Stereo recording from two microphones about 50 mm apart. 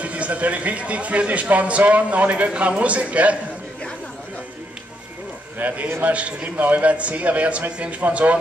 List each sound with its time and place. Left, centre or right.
0.0 s speech: right
5.6 s a man's voice: right
5.9 s a man's voice: right
6.1 s speech: right